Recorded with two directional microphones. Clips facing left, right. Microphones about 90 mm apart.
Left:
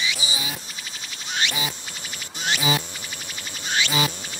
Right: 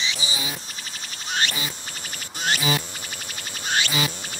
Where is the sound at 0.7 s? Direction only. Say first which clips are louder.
Even; 45° right (ahead or behind).